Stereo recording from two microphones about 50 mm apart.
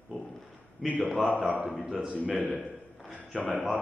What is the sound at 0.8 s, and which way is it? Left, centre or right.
Speech, centre.